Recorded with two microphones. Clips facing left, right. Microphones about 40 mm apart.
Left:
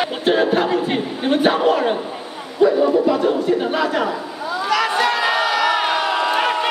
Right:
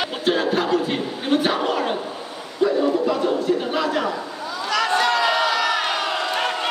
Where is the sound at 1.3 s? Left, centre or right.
Centre.